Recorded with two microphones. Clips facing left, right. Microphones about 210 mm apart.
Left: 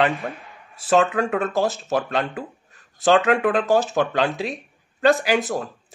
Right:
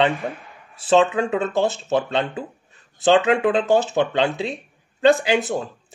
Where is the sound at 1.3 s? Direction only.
25° right (ahead or behind).